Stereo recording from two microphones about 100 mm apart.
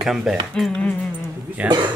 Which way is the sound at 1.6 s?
10° right (ahead or behind).